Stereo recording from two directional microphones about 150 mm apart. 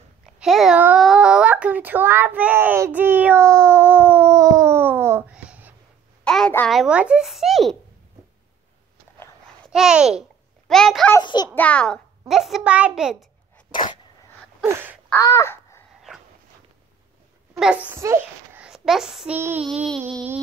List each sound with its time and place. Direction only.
0.4 s a sound: centre (ahead or behind)
1.0 s child singing: 5° right (ahead or behind)
5.3 s a sound: 10° right (ahead or behind)
6.2 s a sound: 5° left (ahead or behind)
6.8 s a child's voice: 5° right (ahead or behind)
9.7 s a child's voice: 5° right (ahead or behind)
11.1 s a child's voice: 25° left (ahead or behind)
11.5 s a child's voice: 10° left (ahead or behind)
14.6 s a sound: 15° right (ahead or behind)
15.2 s babbling: 20° left (ahead or behind)
16.1 s dog: 5° right (ahead or behind)
17.6 s a child's voice: 10° right (ahead or behind)